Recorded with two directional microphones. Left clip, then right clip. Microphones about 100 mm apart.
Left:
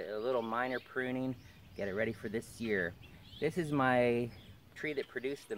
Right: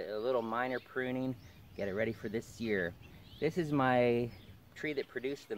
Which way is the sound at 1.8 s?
15° right (ahead or behind).